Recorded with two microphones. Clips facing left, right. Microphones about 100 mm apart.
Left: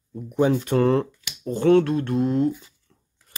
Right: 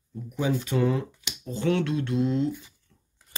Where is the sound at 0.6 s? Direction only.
60° left (ahead or behind).